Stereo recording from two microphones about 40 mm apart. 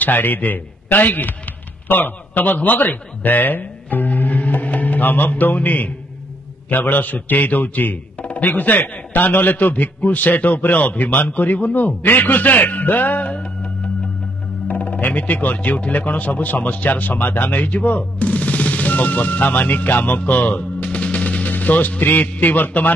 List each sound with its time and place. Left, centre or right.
0.0 s a man's voice: left
14.7 s a man's voice: left
20.2 s music: left
22.3 s a man's voice: left